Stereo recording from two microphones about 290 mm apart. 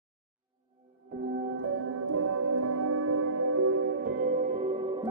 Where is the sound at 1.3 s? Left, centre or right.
Right.